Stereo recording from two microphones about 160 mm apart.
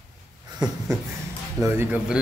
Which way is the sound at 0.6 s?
25° right (ahead or behind).